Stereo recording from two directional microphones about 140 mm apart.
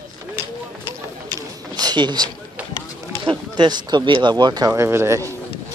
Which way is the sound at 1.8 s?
30° right (ahead or behind).